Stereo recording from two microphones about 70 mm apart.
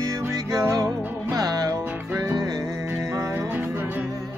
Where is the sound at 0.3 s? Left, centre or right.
Right.